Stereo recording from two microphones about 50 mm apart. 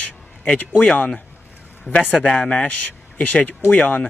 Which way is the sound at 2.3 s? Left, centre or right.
Left.